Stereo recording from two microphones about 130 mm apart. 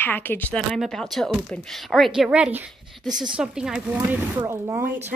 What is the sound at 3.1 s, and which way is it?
Speech, 30° right (ahead or behind).